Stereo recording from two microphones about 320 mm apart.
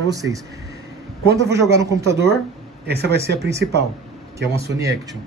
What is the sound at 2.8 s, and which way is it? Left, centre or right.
Speech, right.